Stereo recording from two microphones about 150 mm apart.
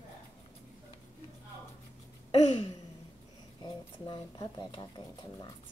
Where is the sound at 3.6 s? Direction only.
30° left (ahead or behind).